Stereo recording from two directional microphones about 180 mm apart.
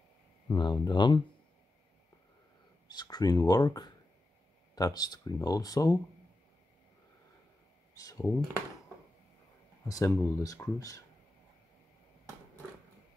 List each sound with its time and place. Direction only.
0.5 s speech: 25° left (ahead or behind)
2.9 s speech: 20° left (ahead or behind)
7.9 s speech: 20° left (ahead or behind)
9.8 s speech: 20° left (ahead or behind)